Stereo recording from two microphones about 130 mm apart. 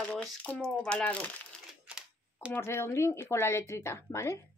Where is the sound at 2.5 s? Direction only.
20° left (ahead or behind).